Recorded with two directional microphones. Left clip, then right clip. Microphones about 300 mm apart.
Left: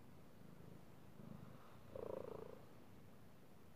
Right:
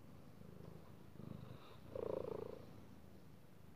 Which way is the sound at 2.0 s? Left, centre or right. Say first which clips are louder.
Right 5 dB; centre.